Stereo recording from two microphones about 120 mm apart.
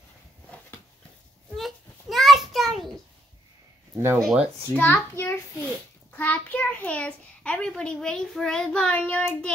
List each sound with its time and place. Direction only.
1.6 s a sound: centre (ahead or behind)
4.2 s speech: 5° right (ahead or behind)
4.7 s a child's voice: 15° left (ahead or behind)